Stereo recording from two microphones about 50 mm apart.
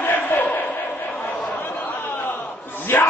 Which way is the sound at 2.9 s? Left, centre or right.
Left.